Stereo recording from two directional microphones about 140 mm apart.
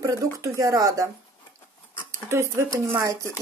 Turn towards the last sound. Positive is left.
turn(degrees=-25)  # may be behind; listen again after turning